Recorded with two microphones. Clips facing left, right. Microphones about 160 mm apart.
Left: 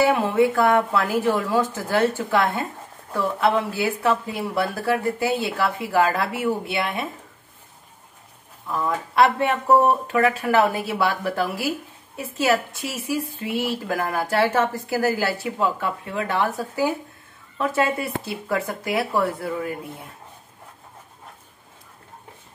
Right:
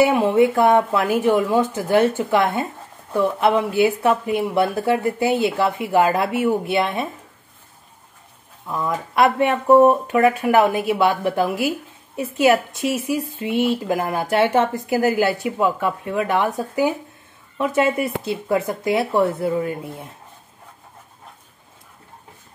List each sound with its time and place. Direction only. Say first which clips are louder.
0.0 s speech: right 3 dB; 20° right (ahead or behind)
8.6 s speech: right 1 dB; 20° right (ahead or behind)